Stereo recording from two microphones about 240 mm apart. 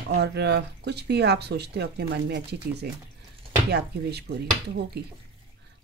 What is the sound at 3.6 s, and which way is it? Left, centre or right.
Speech, right.